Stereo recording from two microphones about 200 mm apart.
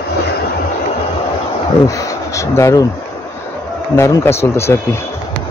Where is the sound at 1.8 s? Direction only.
15° left (ahead or behind).